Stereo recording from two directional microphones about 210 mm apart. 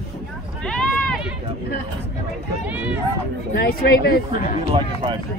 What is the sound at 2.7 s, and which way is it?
Speech, 5° right (ahead or behind).